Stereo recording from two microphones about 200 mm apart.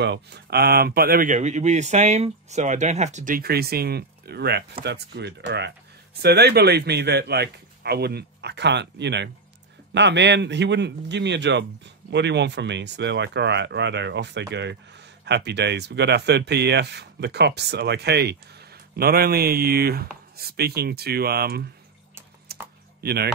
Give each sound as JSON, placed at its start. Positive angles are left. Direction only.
{"t": 0.0, "sound": "a man's voice", "side_deg": -55}
{"t": 22.5, "sound": "typing", "side_deg": -50}
{"t": 22.9, "sound": "speech", "side_deg": -50}